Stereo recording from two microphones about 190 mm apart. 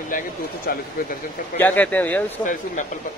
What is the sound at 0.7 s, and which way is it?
Speech, 50° left (ahead or behind).